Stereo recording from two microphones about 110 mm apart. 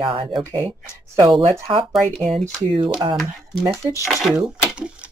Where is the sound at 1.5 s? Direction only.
50° right (ahead or behind).